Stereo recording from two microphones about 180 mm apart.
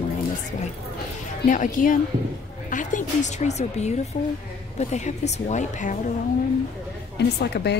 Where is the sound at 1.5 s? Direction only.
45° left (ahead or behind).